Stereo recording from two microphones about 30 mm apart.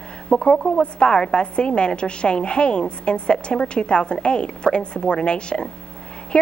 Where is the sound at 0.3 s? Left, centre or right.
Left.